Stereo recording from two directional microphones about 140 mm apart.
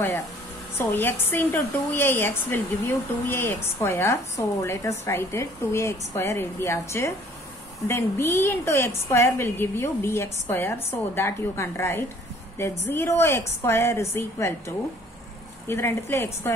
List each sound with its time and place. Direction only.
0.7 s a woman's voice: 15° left (ahead or behind)
15.6 s speech: 20° left (ahead or behind)